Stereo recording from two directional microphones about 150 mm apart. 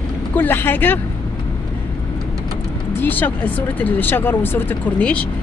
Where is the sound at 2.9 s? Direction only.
10° left (ahead or behind).